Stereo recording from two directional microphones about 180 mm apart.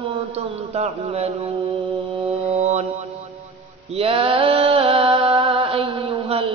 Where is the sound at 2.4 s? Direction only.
40° right (ahead or behind).